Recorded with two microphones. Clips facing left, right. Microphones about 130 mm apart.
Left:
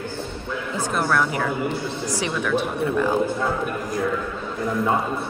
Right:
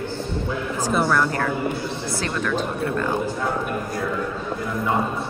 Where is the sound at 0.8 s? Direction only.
Centre (ahead or behind).